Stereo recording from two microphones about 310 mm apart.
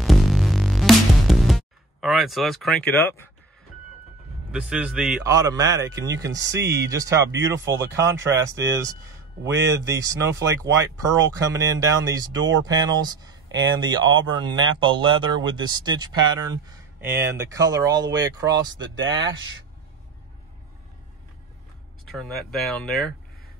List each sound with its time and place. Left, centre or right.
0.0 s music: centre
4.5 s speech: centre
9.7 s speech: centre
13.5 s speech: right
13.7 s speech: centre
22.0 s speech: centre